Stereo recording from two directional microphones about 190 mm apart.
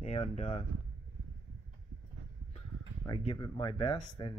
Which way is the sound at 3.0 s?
25° left (ahead or behind).